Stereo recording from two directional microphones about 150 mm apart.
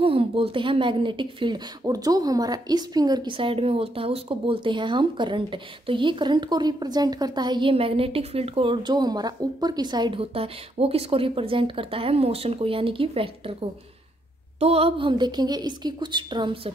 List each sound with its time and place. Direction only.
0.0 s speech: 40° right (ahead or behind)